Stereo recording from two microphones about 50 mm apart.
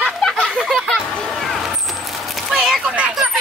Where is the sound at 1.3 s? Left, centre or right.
Centre.